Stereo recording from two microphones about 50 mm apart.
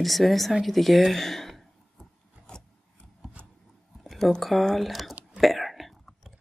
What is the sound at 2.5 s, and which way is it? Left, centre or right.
Filing, centre.